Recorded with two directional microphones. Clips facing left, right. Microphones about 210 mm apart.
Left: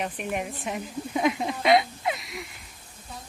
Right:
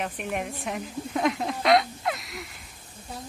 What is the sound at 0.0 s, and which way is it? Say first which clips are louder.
A woman's voice: left 1 dB; centre (ahead or behind).